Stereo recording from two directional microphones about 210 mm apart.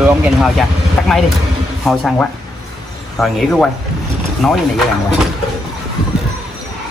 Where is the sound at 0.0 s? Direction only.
5° right (ahead or behind).